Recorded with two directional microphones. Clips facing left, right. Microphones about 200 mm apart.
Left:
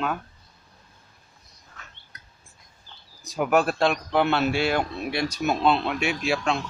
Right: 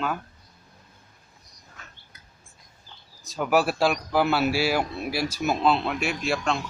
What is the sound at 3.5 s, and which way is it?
Speech, 5° right (ahead or behind).